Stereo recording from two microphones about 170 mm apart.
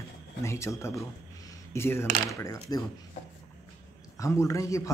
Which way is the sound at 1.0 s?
15° left (ahead or behind).